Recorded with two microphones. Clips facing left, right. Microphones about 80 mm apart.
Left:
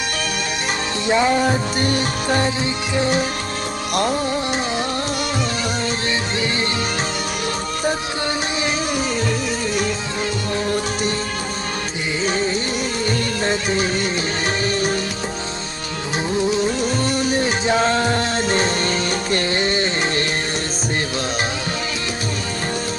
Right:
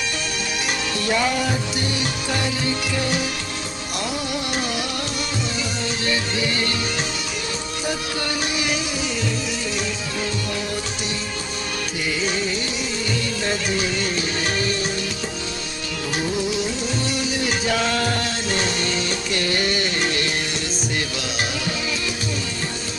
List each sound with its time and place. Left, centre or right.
1.0 s music: left
3.9 s music: left
12.2 s music: left
16.5 s music: left
19.4 s music: left